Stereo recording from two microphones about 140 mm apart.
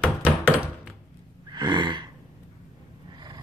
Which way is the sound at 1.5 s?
30° right (ahead or behind).